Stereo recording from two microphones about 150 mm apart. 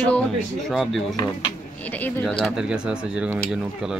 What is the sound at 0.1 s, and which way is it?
Speech, 5° left (ahead or behind).